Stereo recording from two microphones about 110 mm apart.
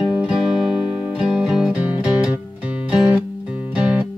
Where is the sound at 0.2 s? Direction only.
10° right (ahead or behind).